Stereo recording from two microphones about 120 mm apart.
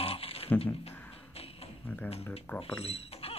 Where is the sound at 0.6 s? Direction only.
55° left (ahead or behind).